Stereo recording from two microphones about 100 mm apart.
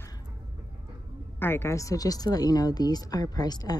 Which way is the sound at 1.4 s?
25° left (ahead or behind).